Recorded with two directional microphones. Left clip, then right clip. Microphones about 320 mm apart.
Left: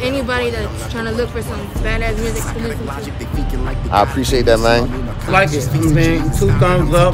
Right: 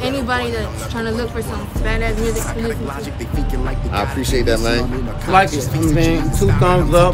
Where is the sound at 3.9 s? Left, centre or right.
Centre.